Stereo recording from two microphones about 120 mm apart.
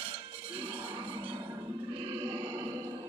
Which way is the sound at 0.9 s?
45° right (ahead or behind).